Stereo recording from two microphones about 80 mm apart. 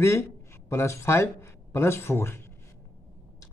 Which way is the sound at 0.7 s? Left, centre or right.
Left.